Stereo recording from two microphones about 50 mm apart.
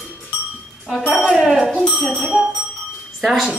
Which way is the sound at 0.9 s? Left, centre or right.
Centre.